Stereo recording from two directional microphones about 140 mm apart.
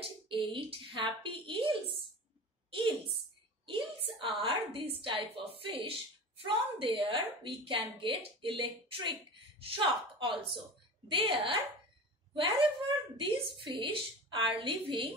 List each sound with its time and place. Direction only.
0.0 s a woman's voice: 35° right (ahead or behind)
3.6 s a woman's voice: 35° right (ahead or behind)